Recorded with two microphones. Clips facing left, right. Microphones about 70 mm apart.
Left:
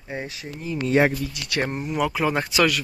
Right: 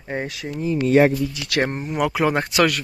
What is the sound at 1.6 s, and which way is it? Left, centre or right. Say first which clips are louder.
Speech: right 2 dB; right.